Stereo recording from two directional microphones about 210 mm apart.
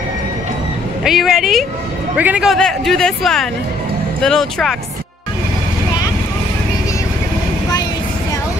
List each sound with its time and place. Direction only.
1.0 s speech: centre (ahead or behind)